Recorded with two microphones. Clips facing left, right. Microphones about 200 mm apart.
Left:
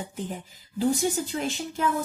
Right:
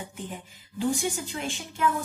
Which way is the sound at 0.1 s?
40° left (ahead or behind).